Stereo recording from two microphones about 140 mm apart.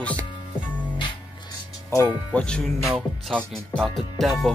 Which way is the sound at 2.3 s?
10° left (ahead or behind).